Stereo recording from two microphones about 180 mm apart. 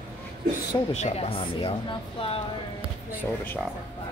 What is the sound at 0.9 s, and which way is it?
Speech, 35° left (ahead or behind).